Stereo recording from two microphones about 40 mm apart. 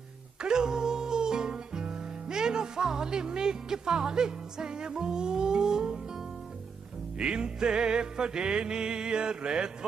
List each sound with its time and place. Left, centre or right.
0.4 s music: centre
7.2 s music: centre